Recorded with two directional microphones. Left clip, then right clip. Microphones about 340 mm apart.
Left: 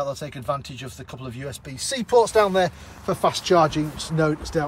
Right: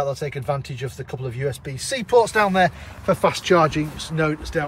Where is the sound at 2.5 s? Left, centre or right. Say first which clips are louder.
Right 3 dB; centre.